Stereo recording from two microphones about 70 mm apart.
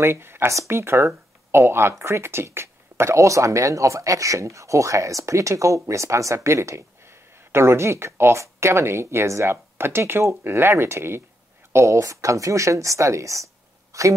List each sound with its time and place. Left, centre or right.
0.0 s speech: right